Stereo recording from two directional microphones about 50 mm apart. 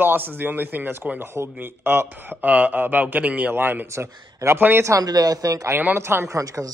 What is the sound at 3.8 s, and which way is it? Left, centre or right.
Speech, right.